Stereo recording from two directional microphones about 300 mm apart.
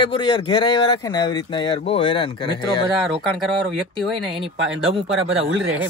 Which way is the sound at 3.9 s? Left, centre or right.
Centre.